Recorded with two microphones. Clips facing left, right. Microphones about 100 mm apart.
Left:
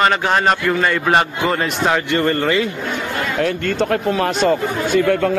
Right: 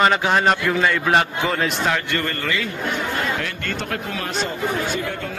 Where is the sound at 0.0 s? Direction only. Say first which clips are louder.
Left 1 dB; 5° right (ahead or behind).